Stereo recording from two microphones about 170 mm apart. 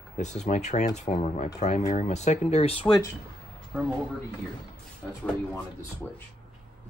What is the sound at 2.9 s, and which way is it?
Speech, 15° left (ahead or behind).